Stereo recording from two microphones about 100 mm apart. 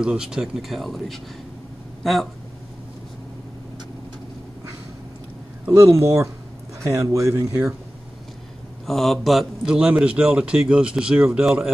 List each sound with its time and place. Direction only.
0.0 s speech: 5° right (ahead or behind)
5.7 s speech: 30° right (ahead or behind)
8.8 s a man's voice: centre (ahead or behind)